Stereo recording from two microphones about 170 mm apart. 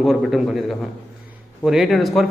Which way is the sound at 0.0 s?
Centre (ahead or behind).